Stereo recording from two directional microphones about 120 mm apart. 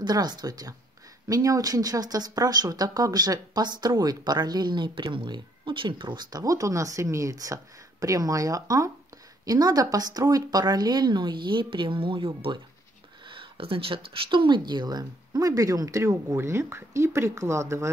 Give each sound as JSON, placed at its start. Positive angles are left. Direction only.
{"t": 0.0, "sound": "speech", "side_deg": -35}